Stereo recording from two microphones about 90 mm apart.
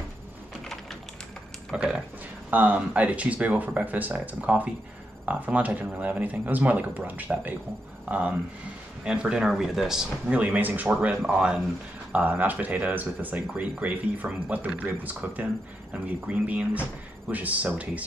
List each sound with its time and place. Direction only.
1.7 s speech: 10° right (ahead or behind)